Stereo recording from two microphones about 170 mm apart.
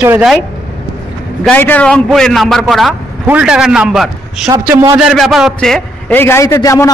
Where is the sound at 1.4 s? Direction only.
10° left (ahead or behind).